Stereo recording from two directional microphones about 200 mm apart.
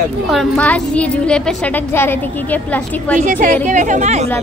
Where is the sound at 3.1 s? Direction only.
40° right (ahead or behind).